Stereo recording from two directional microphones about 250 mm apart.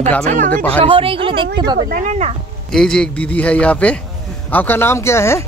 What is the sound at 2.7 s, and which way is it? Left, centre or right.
Speech, centre.